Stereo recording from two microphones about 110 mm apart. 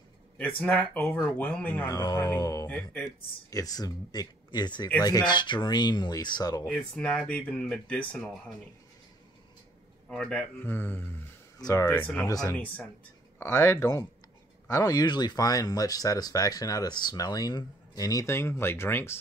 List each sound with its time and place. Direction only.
0.4 s speech: 10° left (ahead or behind)
1.9 s speech: 35° left (ahead or behind)
2.6 s speech: 15° left (ahead or behind)
3.4 s speech: 35° left (ahead or behind)
6.6 s speech: 10° left (ahead or behind)
10.0 s speech: 10° left (ahead or behind)
11.5 s a sound: 35° left (ahead or behind)
11.8 s speech: 15° left (ahead or behind)
13.4 s speech: 25° left (ahead or behind)